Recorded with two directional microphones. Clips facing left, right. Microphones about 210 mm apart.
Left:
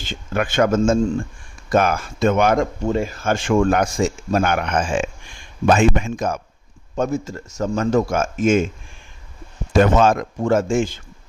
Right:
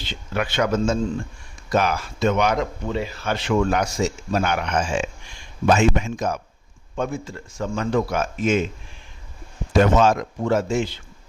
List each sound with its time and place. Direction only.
0.0 s speech: 50° left (ahead or behind)
9.7 s speech: 50° left (ahead or behind)